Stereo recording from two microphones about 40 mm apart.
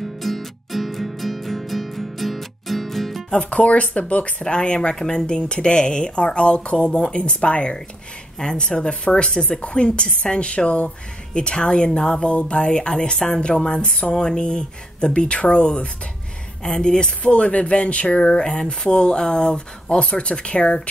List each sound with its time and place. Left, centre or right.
0.0 s music: centre
3.4 s speech: left
4.4 s speech: left